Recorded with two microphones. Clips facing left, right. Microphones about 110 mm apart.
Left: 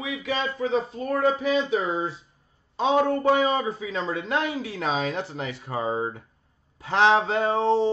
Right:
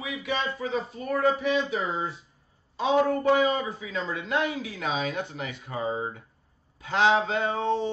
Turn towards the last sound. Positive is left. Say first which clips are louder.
# left 5 dB
turn(degrees=30)  # may be behind; listen again after turning